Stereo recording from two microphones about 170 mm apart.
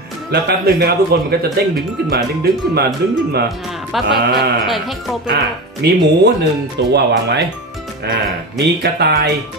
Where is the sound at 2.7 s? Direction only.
70° right (ahead or behind).